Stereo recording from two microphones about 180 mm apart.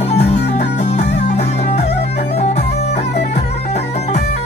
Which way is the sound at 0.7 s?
35° left (ahead or behind).